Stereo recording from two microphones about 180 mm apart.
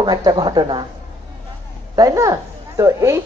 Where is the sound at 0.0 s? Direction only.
25° right (ahead or behind).